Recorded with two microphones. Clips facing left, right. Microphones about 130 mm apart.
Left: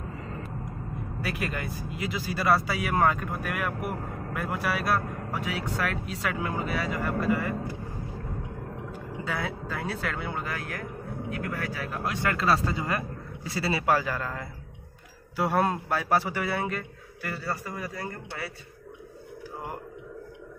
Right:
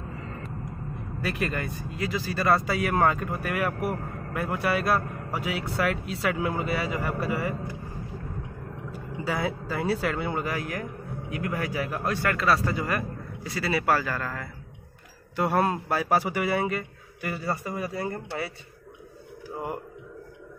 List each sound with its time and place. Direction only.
1.2 s speech: centre (ahead or behind)
2.4 s speech: centre (ahead or behind)
9.2 s speech: 10° right (ahead or behind)
12.0 s a man's voice: 15° left (ahead or behind)
13.8 s speech: 15° left (ahead or behind)
15.3 s speech: centre (ahead or behind)
15.9 s speech: 15° right (ahead or behind)
17.3 s a man's voice: 20° right (ahead or behind)